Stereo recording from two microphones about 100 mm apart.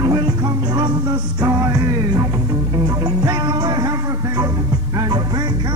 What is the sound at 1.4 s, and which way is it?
Music, 30° right (ahead or behind).